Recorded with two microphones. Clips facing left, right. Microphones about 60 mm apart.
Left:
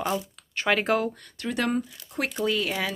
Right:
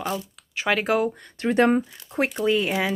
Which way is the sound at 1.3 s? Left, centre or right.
Right.